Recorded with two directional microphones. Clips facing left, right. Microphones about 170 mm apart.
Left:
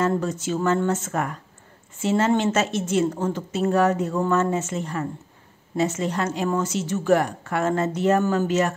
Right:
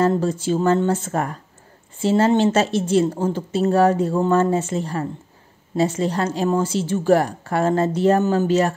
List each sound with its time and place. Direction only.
0.1 s a woman's voice: 30° right (ahead or behind)